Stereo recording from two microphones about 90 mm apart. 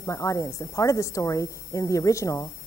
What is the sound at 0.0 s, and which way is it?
A woman's voice, 35° left (ahead or behind).